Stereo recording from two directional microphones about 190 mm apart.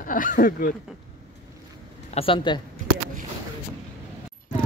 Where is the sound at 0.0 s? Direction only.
45° left (ahead or behind).